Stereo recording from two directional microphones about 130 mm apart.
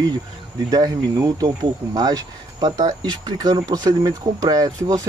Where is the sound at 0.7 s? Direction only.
30° right (ahead or behind).